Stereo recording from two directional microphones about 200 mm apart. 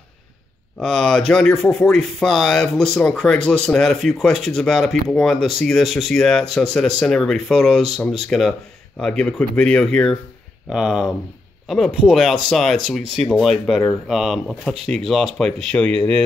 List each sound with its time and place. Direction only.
0.7 s speech: 5° left (ahead or behind)